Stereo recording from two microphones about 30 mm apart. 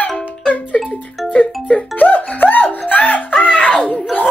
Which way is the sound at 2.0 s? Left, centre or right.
Left.